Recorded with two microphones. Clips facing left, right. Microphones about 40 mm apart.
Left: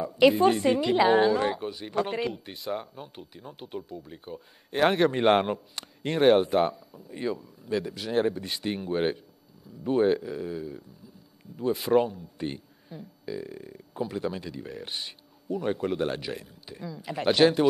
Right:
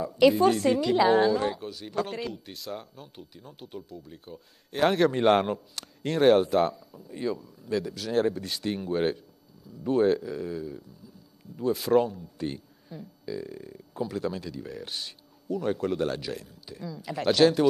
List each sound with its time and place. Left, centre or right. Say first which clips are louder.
0.0 s a woman's voice: even; centre